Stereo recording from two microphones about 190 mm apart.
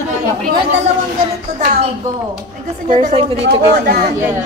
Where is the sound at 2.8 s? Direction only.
35° right (ahead or behind).